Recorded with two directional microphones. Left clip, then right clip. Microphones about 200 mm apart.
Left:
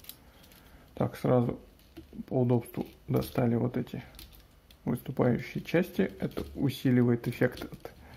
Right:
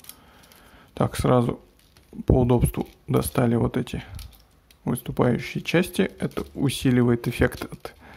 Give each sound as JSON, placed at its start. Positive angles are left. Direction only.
{"t": 0.9, "sound": "speech", "side_deg": -30}